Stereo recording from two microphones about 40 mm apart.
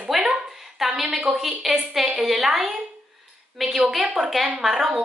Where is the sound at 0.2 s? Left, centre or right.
Centre.